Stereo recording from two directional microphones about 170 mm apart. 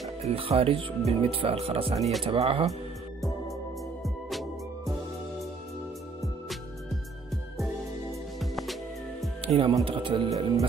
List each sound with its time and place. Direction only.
0.2 s speech: 35° right (ahead or behind)
4.0 s music: centre (ahead or behind)
8.4 s music: centre (ahead or behind)
9.4 s speech: 30° right (ahead or behind)